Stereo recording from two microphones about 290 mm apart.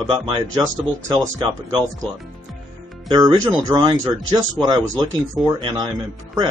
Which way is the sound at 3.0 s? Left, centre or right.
Centre.